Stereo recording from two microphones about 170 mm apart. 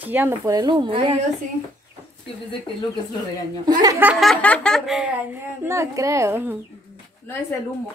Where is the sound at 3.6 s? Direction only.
20° right (ahead or behind).